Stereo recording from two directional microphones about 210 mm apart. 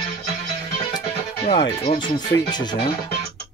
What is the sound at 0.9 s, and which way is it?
Speech, 20° left (ahead or behind).